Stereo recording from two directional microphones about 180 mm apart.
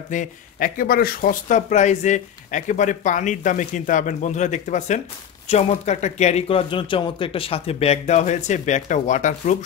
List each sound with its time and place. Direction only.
0.1 s speech: 45° left (ahead or behind)